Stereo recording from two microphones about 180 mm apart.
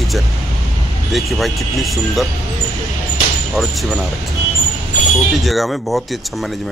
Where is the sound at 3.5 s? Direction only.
Centre (ahead or behind).